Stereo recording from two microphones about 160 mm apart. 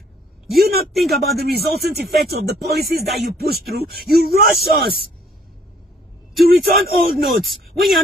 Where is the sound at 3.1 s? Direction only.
75° right (ahead or behind).